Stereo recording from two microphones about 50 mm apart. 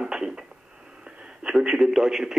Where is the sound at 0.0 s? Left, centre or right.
Centre.